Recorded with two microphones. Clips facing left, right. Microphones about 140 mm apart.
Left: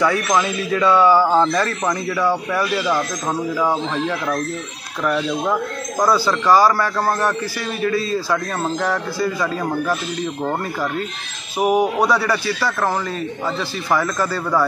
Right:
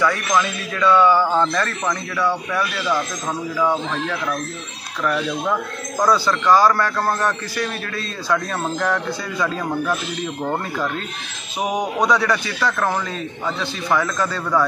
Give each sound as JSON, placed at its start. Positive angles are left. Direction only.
{"t": 0.4, "sound": "speech", "side_deg": 10}
{"t": 1.3, "sound": "a man's voice", "side_deg": 25}
{"t": 1.6, "sound": "speech", "side_deg": 10}
{"t": 2.6, "sound": "a man's voice", "side_deg": 25}
{"t": 6.0, "sound": "a man's voice", "side_deg": 5}